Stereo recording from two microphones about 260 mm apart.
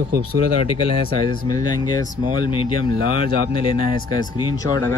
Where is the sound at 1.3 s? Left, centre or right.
Centre.